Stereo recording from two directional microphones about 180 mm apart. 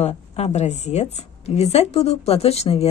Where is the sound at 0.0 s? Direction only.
40° left (ahead or behind).